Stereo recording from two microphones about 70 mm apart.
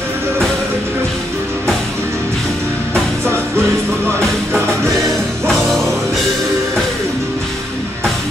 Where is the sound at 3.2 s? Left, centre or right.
Right.